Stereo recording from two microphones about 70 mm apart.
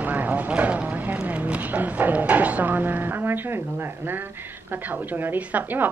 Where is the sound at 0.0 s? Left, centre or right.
Right.